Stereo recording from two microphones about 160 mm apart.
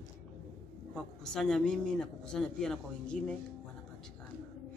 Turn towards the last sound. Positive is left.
turn(degrees=5)  # may be behind; listen again after turning